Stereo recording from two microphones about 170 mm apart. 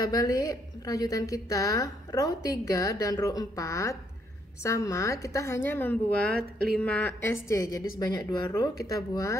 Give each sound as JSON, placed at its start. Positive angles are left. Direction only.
{"t": 0.0, "sound": "a woman's voice", "side_deg": 20}